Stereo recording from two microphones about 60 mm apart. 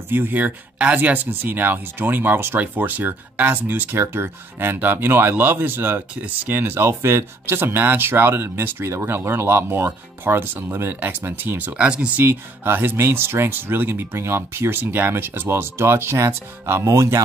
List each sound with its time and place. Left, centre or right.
0.1 s speech: right
12.2 s speech: right
16.8 s speech: right